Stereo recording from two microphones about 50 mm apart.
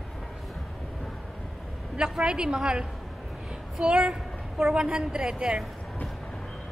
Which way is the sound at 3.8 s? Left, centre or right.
Centre.